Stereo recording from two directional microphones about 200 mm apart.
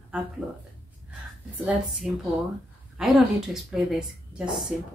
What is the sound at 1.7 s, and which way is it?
A woman's voice, 5° right (ahead or behind).